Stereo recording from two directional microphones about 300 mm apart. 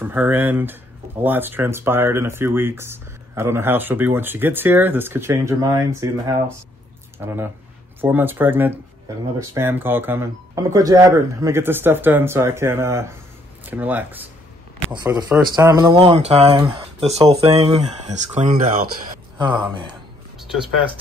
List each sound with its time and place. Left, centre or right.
0.0 s speech: centre; by 18.6 s right
19.3 s speech: centre
20.3 s a sound: centre